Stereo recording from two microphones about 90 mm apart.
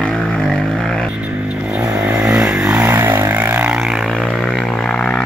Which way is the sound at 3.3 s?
20° right (ahead or behind).